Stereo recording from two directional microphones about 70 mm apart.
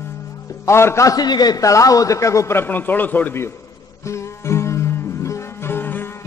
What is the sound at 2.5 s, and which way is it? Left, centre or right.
Speech, left.